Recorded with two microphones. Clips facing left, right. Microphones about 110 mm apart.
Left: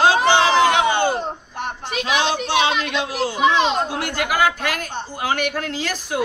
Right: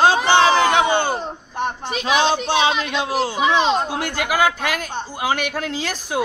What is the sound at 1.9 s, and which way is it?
Speech, 30° right (ahead or behind).